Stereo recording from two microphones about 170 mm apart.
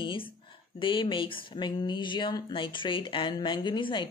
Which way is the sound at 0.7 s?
30° left (ahead or behind).